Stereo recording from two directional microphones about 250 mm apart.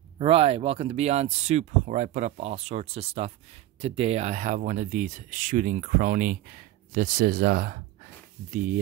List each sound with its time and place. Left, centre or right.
0.2 s speech: right